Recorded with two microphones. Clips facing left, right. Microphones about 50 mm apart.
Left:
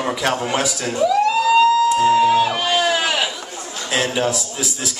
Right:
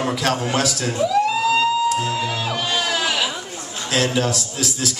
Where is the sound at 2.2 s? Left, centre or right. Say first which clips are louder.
Left 9 dB; centre.